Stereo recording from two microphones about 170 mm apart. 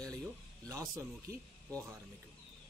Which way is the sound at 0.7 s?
20° right (ahead or behind).